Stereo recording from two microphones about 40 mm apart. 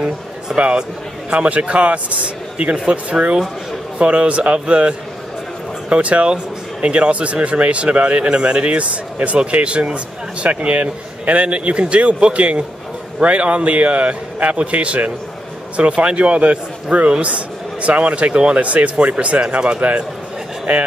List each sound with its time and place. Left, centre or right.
0.5 s speech: centre
1.3 s a man's voice: right